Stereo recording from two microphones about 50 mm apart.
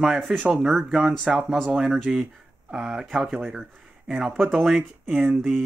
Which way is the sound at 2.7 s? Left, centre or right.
Centre.